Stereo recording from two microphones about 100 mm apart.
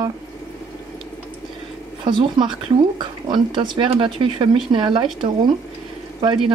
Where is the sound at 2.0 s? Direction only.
50° right (ahead or behind).